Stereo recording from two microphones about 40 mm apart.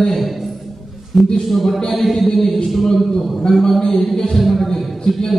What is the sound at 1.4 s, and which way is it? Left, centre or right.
A man's voice, centre.